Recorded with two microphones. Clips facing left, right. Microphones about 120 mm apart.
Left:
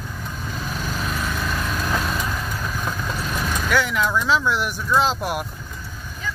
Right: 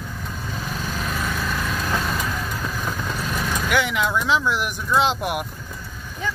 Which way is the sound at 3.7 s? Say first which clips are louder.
Left 1 dB; 15° right (ahead or behind).